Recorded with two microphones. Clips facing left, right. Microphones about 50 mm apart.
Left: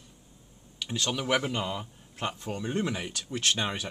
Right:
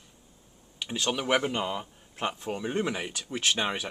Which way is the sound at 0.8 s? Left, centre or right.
Centre.